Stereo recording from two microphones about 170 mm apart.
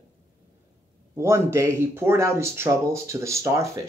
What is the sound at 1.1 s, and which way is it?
Speech, 15° right (ahead or behind).